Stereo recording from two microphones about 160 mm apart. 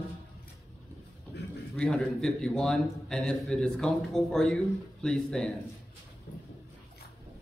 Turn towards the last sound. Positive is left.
turn(degrees=5)  # may be behind; listen again after turning